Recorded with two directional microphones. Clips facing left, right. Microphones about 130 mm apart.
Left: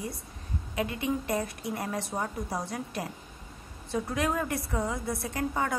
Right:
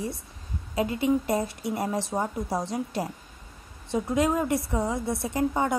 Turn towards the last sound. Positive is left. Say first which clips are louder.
# right 5 dB
turn(degrees=-25)  # may be behind; listen again after turning